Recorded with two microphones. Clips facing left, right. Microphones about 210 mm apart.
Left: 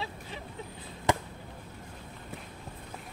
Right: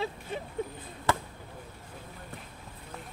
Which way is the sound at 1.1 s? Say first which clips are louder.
Left 1 dB; 15° left (ahead or behind).